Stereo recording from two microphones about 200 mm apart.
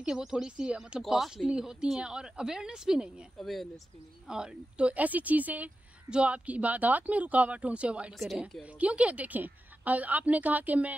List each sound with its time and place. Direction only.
0.0 s a woman's voice: 5° right (ahead or behind)